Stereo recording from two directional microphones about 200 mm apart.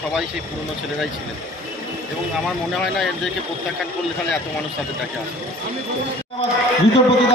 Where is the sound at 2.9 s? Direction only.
Centre (ahead or behind).